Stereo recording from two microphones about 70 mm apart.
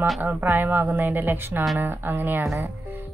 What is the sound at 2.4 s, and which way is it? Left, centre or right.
Speech, right.